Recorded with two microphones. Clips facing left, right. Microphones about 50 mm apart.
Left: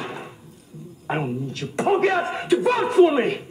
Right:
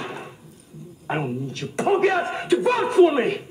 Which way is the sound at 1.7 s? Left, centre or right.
Centre.